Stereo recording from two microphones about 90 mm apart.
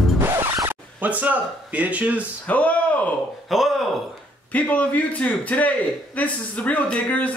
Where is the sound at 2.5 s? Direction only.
15° left (ahead or behind).